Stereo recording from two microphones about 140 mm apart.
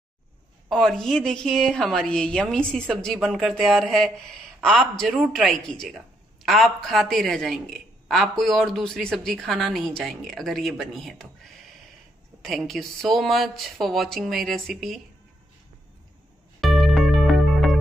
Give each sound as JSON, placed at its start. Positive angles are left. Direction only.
{"t": 0.7, "sound": "a woman's voice", "side_deg": 5}
{"t": 12.4, "sound": "a woman's voice", "side_deg": 0}
{"t": 16.6, "sound": "music", "side_deg": 0}